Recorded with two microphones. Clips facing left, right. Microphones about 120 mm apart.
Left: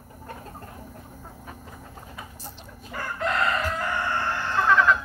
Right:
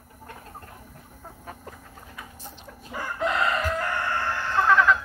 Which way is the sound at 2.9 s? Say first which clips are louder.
Right 1 dB; 10° right (ahead or behind).